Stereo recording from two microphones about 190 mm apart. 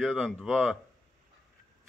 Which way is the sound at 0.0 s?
5° left (ahead or behind).